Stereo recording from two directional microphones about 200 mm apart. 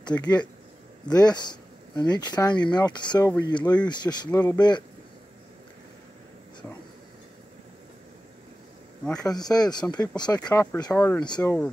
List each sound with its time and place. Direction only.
0.1 s speech: 10° left (ahead or behind)
9.0 s speech: 5° left (ahead or behind)
9.3 s speech: 20° left (ahead or behind)
11.2 s speech: 20° left (ahead or behind)